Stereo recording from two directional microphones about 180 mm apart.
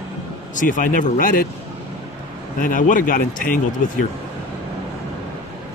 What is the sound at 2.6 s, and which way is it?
Speech, 50° left (ahead or behind).